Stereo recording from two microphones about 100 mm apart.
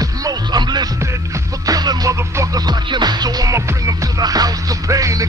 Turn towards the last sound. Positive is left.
turn(degrees=-35)  # may be behind; listen again after turning